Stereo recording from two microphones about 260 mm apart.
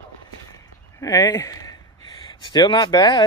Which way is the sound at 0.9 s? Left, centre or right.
Centre.